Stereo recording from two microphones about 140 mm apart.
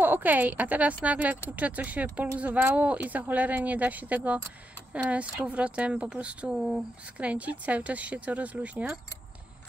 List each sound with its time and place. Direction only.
0.0 s speech: 15° right (ahead or behind)